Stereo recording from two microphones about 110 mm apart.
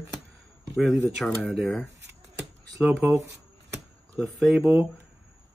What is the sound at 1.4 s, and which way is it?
Speech, 5° right (ahead or behind).